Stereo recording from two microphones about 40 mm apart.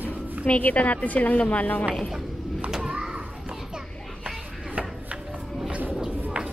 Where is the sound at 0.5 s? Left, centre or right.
Left.